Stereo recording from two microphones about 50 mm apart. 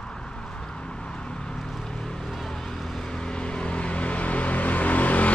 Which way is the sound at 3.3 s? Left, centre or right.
Left.